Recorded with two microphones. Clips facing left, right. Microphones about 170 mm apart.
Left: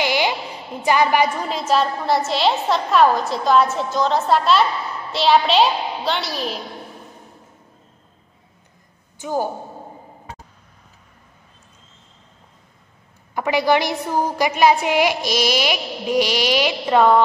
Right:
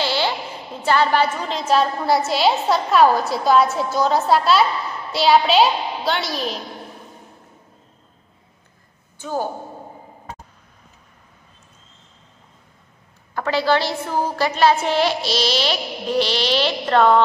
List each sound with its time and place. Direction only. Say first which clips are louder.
0.0 s a sound: left 1 dB; 15° left (ahead or behind)
0.8 s a woman's voice: left 1 dB; 15° left (ahead or behind)
1.6 s a woman's voice: right 1 dB; centre (ahead or behind)
9.2 s a woman's voice: left 2 dB; 15° left (ahead or behind)
13.3 s a woman's voice: left 1 dB; 15° left (ahead or behind)